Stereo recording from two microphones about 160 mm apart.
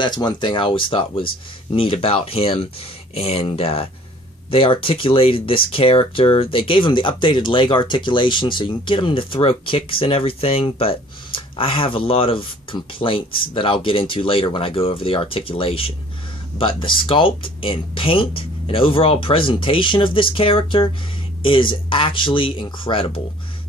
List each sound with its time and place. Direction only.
0.0 s speech: 30° left (ahead or behind)